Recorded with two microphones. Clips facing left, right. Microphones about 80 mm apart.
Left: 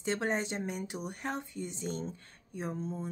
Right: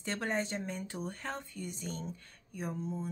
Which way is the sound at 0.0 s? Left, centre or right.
Left.